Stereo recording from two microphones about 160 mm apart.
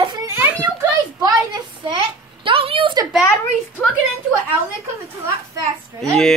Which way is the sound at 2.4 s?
35° right (ahead or behind).